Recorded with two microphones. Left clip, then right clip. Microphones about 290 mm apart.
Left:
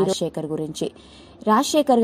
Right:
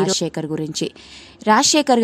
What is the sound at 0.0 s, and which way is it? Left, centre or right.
A woman's voice, right.